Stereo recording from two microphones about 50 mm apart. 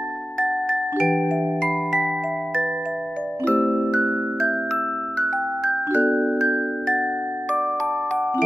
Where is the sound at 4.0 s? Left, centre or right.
Centre.